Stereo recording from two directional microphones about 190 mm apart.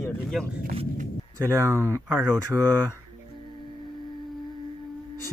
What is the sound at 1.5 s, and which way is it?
Speech, 15° right (ahead or behind).